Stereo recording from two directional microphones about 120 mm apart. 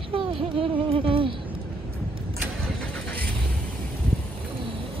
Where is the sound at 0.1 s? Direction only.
45° right (ahead or behind).